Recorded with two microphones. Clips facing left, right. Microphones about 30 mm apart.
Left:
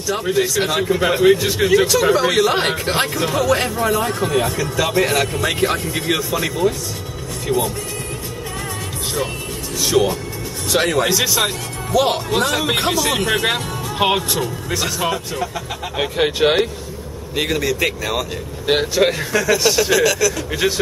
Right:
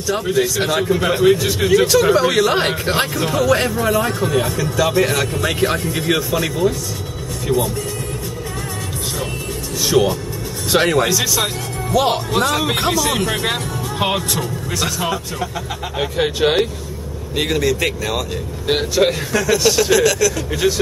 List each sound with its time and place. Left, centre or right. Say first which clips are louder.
0.4 s speech: even; centre
9.8 s speech: right 1 dB; centre
11.1 s speech: left 1 dB; left
11.9 s speech: even; centre
16.0 s speech: left 1 dB; centre
17.4 s speech: right 1 dB; centre